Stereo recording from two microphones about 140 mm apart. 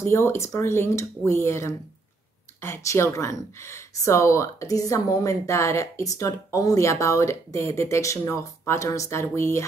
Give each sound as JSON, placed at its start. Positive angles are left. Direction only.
{"t": 0.0, "sound": "speech", "side_deg": 20}